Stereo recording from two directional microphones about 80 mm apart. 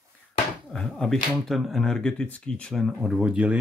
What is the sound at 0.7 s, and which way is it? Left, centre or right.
Speech, centre.